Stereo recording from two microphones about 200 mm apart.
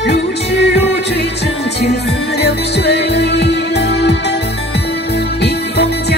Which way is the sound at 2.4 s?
55° left (ahead or behind).